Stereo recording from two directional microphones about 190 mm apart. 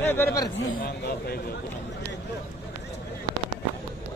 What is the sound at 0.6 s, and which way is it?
Speech, 55° left (ahead or behind).